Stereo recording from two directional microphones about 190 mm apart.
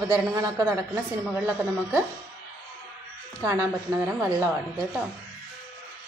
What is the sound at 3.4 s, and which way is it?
A man's voice, 15° right (ahead or behind).